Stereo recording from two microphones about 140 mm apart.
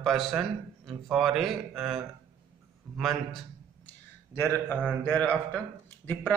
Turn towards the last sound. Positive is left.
turn(degrees=10)  # may be behind; listen again after turning